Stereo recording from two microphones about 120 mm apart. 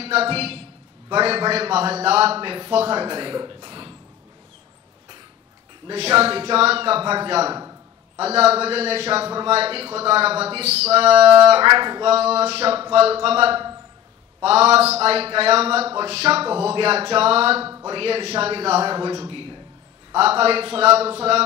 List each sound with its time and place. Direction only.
0.0 s a man's voice: 55° right (ahead or behind)
5.9 s a man's voice: 55° right (ahead or behind)
11.6 s speech: 40° right (ahead or behind)
12.1 s a man's voice: 60° right (ahead or behind)
18.9 s a man's voice: 35° right (ahead or behind)
20.2 s a man's voice: 55° right (ahead or behind)